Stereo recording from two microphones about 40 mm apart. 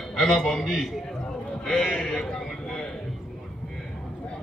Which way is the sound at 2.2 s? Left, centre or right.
Centre.